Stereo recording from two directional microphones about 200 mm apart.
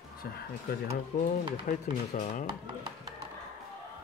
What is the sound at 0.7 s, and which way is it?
Speech, 50° left (ahead or behind).